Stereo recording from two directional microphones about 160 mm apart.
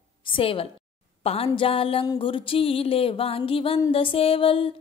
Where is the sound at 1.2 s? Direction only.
40° left (ahead or behind).